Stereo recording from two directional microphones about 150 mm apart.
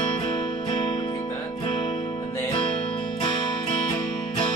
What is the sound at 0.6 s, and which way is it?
Music, 35° left (ahead or behind).